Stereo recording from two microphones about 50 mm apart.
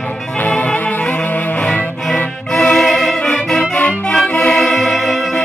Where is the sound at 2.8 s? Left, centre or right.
Centre.